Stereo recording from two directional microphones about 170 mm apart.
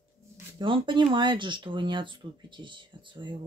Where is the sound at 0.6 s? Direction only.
30° right (ahead or behind).